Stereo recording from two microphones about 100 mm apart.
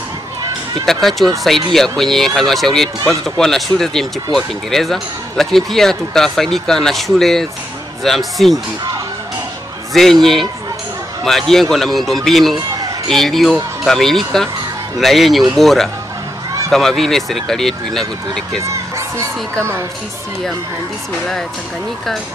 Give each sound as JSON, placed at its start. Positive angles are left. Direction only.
{"t": 0.8, "sound": "speech", "side_deg": 5}
{"t": 10.2, "sound": "speech", "side_deg": 5}
{"t": 18.6, "sound": "speech", "side_deg": -30}